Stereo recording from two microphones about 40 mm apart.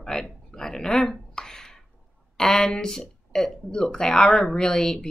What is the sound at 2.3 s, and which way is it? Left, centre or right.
Speech, centre.